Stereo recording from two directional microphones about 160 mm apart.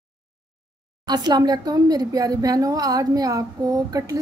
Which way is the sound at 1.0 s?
25° right (ahead or behind).